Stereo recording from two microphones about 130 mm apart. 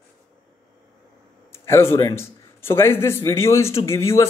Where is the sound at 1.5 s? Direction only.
20° left (ahead or behind).